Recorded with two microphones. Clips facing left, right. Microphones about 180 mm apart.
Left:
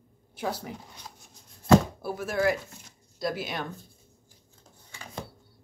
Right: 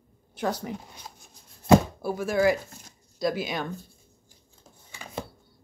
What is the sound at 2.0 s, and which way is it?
Speech, 5° left (ahead or behind).